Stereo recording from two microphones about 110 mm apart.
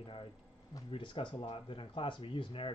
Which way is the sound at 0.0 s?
55° left (ahead or behind).